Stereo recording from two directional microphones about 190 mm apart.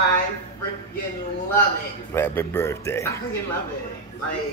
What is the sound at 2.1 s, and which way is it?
A man's voice, 10° left (ahead or behind).